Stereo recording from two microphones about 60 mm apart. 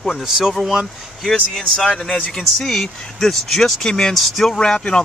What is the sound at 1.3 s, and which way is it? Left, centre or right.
Speech, centre.